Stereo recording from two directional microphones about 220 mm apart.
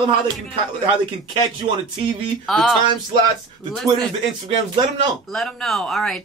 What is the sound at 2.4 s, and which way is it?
Speech, centre (ahead or behind).